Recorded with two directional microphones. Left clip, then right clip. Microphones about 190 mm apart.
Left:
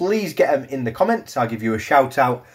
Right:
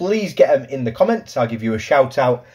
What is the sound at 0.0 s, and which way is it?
Speech, centre (ahead or behind).